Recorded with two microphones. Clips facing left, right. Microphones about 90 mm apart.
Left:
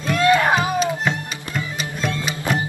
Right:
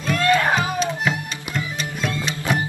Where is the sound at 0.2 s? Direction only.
15° left (ahead or behind).